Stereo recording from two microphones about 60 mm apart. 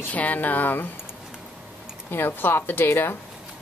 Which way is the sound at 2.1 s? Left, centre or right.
Left.